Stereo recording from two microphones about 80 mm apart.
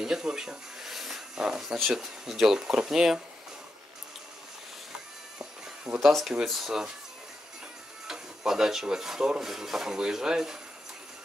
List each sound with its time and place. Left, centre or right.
0.0 s speech: centre
5.9 s speech: centre
8.1 s speech: centre